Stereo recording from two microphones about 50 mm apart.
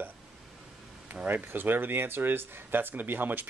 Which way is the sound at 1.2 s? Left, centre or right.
Right.